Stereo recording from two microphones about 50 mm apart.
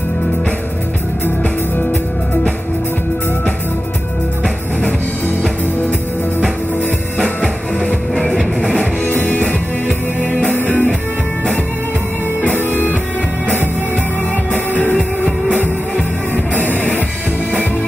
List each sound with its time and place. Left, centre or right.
7.2 s music: centre
9.0 s music: left
9.4 s music: left
10.5 s music: left
12.5 s music: right
16.5 s music: left